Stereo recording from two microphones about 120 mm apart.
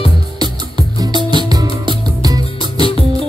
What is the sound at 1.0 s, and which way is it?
Music, 40° right (ahead or behind).